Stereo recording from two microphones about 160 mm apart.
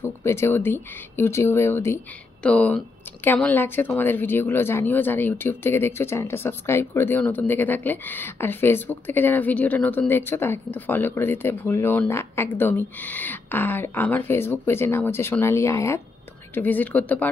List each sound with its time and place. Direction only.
0.0 s speech: 15° left (ahead or behind)